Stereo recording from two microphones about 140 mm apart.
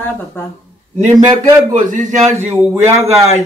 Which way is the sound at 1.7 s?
65° right (ahead or behind).